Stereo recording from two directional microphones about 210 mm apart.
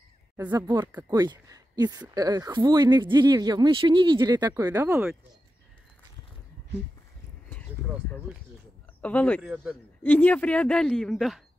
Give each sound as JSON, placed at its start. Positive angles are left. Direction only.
{"t": 0.5, "sound": "speech", "side_deg": -20}
{"t": 9.0, "sound": "speech", "side_deg": 5}
{"t": 9.4, "sound": "a woman's voice", "side_deg": -5}
{"t": 10.0, "sound": "a woman's voice", "side_deg": 10}